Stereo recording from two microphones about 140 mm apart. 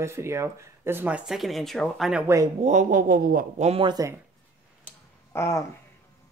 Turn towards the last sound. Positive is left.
turn(degrees=20)  # may be behind; listen again after turning